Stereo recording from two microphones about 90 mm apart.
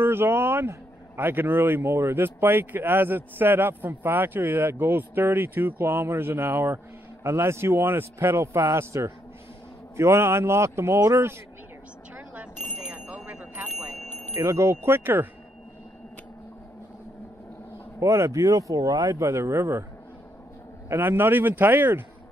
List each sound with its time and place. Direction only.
0.0 s speech: 25° right (ahead or behind)
12.7 s a sound: 15° right (ahead or behind)
14.4 s speech: 30° right (ahead or behind)
18.0 s speech: 30° right (ahead or behind)
20.9 s speech: 25° right (ahead or behind)